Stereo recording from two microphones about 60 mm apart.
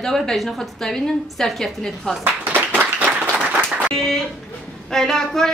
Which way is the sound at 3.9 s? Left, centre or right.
Centre.